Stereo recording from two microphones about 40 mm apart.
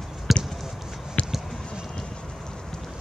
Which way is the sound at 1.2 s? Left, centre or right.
Left.